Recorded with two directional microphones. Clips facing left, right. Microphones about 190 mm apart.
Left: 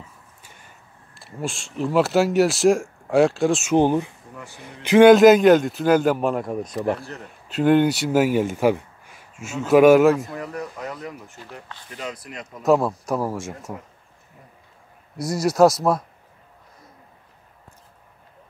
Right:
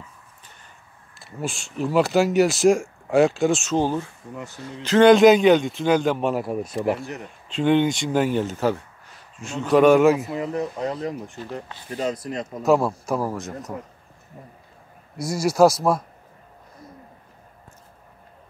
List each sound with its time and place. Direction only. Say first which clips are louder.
1.2 s speech: even; centre (ahead or behind)
3.7 s speech: left 4 dB; 15° left (ahead or behind)
10.3 s speech: right 5 dB; 20° right (ahead or behind); by 12.4 s 35° right (ahead or behind)
12.6 s speech: left 1 dB; centre (ahead or behind)
15.1 s speech: left 1 dB; centre (ahead or behind)